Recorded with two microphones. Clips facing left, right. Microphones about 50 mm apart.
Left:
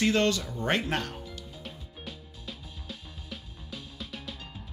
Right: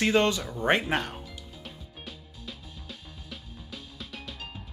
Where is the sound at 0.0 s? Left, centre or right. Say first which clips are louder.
Right 1 dB; centre.